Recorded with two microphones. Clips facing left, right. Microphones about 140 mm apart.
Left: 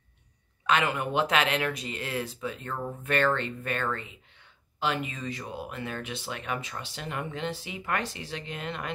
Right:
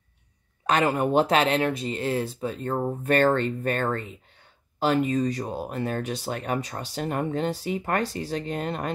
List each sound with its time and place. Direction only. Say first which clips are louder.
0.7 s speech: right 4 dB; 40° right (ahead or behind)